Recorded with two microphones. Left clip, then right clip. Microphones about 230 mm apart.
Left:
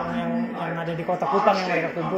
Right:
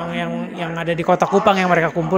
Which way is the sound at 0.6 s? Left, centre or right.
Right.